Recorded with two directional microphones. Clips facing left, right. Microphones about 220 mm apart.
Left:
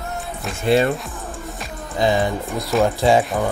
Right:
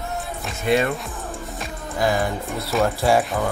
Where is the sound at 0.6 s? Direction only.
35° left (ahead or behind).